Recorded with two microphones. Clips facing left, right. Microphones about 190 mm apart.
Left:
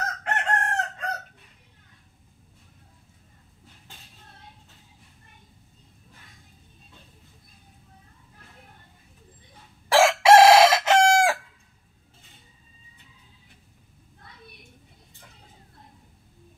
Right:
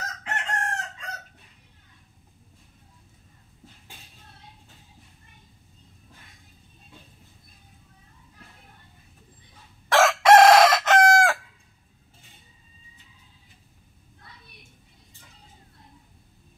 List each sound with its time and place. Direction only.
0.0 s chicken: 60° left (ahead or behind)
9.8 s chicken: 10° left (ahead or behind)